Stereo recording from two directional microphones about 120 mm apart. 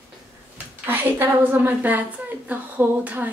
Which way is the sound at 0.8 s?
15° right (ahead or behind).